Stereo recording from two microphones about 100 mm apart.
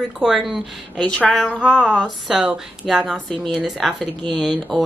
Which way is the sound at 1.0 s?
15° left (ahead or behind).